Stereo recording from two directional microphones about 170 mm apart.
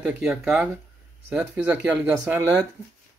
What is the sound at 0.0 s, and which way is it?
Speech, 5° right (ahead or behind).